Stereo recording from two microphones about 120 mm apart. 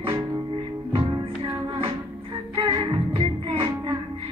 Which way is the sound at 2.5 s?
45° right (ahead or behind).